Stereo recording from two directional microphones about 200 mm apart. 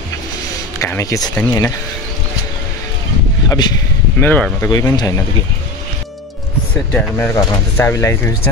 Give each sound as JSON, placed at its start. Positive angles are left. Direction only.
{"t": 0.7, "sound": "speech", "side_deg": 15}
{"t": 3.4, "sound": "speech", "side_deg": 20}
{"t": 4.2, "sound": "speech", "side_deg": 10}
{"t": 4.6, "sound": "speech", "side_deg": 20}
{"t": 6.9, "sound": "speech", "side_deg": 5}